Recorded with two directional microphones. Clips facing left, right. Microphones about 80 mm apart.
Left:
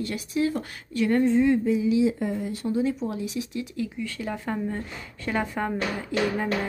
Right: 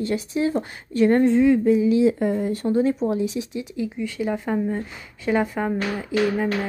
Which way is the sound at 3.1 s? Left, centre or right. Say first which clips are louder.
Right 6 dB; right.